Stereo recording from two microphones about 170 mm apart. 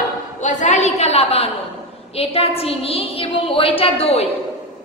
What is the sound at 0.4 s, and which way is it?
A woman's voice, 45° left (ahead or behind).